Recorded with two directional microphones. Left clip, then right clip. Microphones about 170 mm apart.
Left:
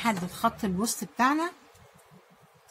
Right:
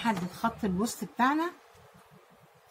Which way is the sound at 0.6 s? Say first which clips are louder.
Left 1 dB; 30° left (ahead or behind).